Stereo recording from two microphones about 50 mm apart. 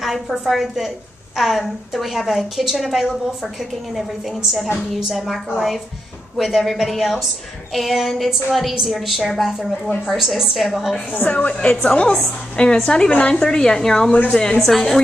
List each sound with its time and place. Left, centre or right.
0.0 s a woman's voice: centre
4.4 s a woman's voice: centre
11.1 s a woman's voice: left; by 15.0 s centre